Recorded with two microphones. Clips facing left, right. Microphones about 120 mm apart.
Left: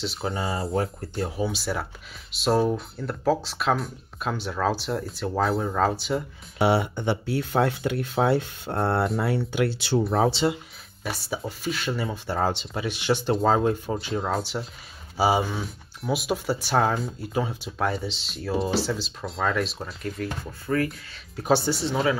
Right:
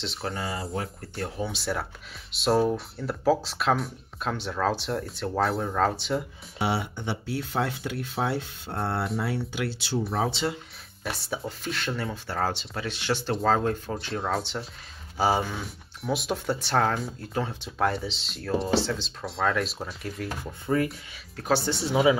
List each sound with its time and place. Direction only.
0.0 s speech: 5° left (ahead or behind)
0.3 s speech: 25° left (ahead or behind)
1.3 s speech: centre (ahead or behind)
6.6 s speech: 60° left (ahead or behind)
10.1 s speech: 40° left (ahead or behind)
11.1 s speech: 5° left (ahead or behind)
12.1 s speech: 15° left (ahead or behind)
13.9 s speech: 5° left (ahead or behind)
20.6 s speech: 20° right (ahead or behind)
21.6 s speech: centre (ahead or behind)